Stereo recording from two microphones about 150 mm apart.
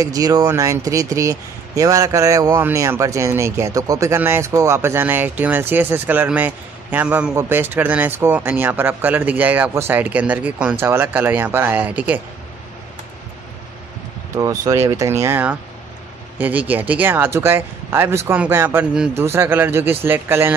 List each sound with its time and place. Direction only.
0.0 s a man's voice: 25° right (ahead or behind)
14.3 s a man's voice: 20° right (ahead or behind)